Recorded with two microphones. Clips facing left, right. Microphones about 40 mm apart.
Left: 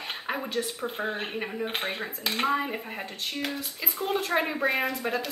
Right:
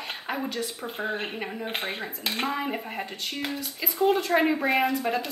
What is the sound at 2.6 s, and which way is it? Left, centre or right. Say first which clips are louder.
Speech: right 2 dB; centre.